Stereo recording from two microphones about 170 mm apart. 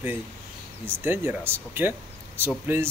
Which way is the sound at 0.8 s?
10° right (ahead or behind).